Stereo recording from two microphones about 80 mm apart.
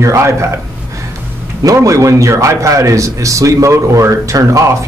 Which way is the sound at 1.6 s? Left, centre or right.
Right.